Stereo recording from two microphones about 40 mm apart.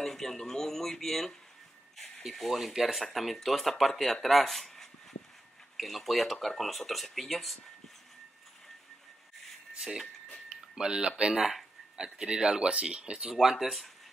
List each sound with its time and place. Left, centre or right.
0.0 s speech: centre
9.8 s speech: centre